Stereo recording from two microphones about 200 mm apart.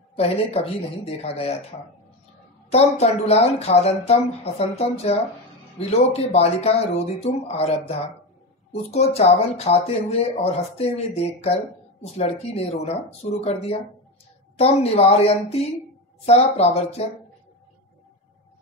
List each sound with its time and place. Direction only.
0.1 s speech: 30° left (ahead or behind)
8.9 s speech: 30° left (ahead or behind)